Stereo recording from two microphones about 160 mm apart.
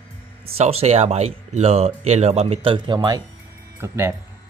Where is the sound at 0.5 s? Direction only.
40° right (ahead or behind).